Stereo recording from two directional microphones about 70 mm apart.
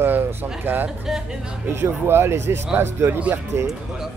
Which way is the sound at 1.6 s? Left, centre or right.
Right.